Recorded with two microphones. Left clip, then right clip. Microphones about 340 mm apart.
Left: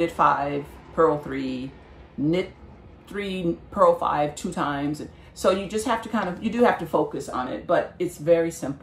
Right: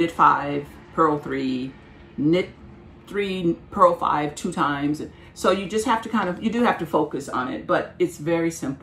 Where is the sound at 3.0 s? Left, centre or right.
Centre.